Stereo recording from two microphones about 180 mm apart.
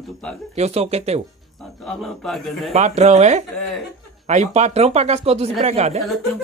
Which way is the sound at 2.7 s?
40° right (ahead or behind).